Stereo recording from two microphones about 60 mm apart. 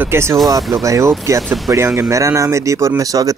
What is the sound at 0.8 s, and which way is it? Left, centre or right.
Speech, right.